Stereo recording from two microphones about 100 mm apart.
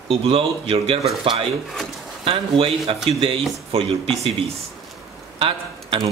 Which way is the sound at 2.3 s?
70° right (ahead or behind).